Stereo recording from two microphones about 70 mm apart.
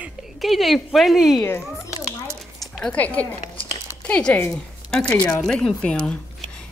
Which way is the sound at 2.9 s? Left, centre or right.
Left.